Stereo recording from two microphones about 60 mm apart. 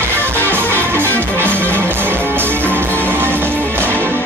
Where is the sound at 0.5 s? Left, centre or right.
Right.